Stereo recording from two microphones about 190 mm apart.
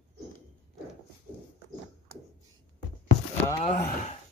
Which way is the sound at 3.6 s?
50° left (ahead or behind).